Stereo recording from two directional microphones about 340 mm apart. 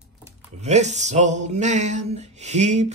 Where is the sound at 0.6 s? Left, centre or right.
Centre.